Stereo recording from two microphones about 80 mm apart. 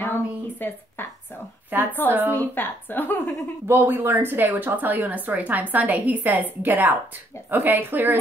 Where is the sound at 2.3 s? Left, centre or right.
Left.